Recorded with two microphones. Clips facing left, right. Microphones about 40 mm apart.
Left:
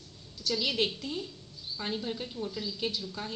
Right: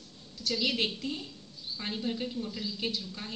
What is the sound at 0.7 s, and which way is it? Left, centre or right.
Speech, right.